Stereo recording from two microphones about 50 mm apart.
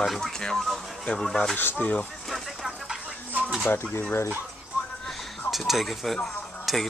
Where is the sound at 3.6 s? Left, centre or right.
Left.